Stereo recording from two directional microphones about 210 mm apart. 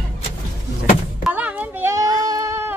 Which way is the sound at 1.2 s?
5° right (ahead or behind).